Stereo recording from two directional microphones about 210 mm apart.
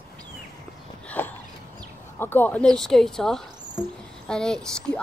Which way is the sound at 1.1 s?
10° left (ahead or behind).